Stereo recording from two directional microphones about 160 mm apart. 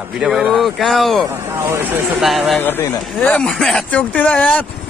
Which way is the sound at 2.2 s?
Centre (ahead or behind).